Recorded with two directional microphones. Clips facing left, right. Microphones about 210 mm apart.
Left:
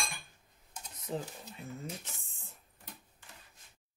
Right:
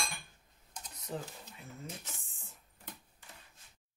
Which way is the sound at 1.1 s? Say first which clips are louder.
Left 3 dB; 20° left (ahead or behind).